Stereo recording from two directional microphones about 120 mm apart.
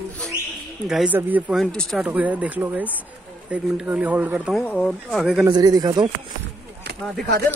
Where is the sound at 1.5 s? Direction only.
5° left (ahead or behind).